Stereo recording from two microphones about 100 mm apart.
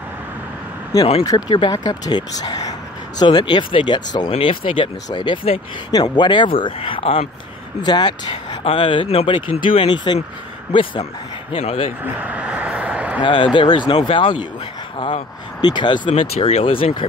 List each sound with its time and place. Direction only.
1.2 s speech: 45° left (ahead or behind)
4.3 s speech: 65° left (ahead or behind)
7.8 s speech: 50° left (ahead or behind); by 11.8 s 65° left (ahead or behind)
12.0 s a sound: 15° right (ahead or behind)
13.2 s speech: 55° left (ahead or behind)
15.6 s speech: 50° left (ahead or behind); by 17.1 s 65° left (ahead or behind)